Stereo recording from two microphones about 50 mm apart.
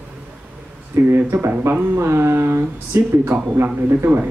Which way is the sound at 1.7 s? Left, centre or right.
Right.